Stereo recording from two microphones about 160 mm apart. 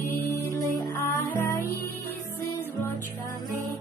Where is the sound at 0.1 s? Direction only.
15° left (ahead or behind).